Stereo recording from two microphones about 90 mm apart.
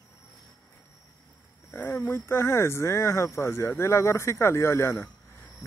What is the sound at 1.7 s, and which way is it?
Speech, 25° left (ahead or behind).